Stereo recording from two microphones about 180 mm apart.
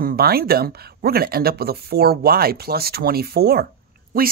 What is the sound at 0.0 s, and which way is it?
Speech, 55° right (ahead or behind).